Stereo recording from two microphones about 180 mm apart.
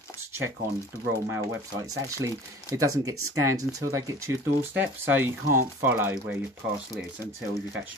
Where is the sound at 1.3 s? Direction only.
15° right (ahead or behind).